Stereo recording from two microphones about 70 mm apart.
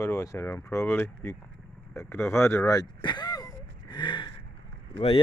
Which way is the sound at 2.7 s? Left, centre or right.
Left.